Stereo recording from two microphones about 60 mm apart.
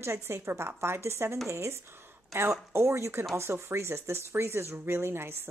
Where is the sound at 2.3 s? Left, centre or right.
Right.